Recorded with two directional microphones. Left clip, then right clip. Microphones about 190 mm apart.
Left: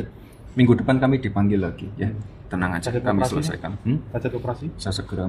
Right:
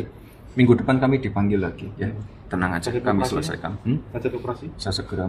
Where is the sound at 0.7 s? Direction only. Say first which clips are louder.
Right 1 dB; 5° left (ahead or behind).